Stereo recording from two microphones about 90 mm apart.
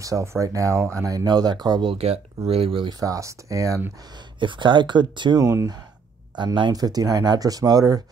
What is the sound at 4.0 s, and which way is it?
Speech, 55° right (ahead or behind).